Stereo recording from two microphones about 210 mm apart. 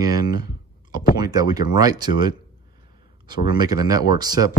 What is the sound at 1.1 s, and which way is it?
Speech, 20° right (ahead or behind).